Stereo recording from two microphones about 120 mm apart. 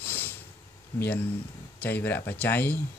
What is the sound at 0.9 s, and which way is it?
Speech, 20° left (ahead or behind).